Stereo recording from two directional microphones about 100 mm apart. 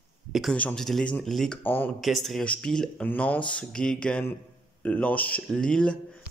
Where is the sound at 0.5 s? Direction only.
10° left (ahead or behind).